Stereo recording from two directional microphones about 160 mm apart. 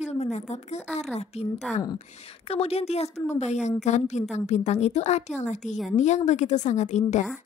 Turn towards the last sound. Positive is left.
turn(degrees=50)  # may be behind; listen again after turning